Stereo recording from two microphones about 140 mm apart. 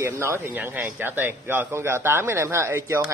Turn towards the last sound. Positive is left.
turn(degrees=-20)  # may be behind; listen again after turning